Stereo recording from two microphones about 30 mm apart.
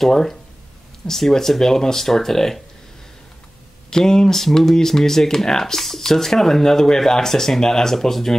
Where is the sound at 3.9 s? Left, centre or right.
Left.